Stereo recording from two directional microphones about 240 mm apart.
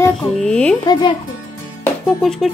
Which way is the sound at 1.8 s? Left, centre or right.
Centre.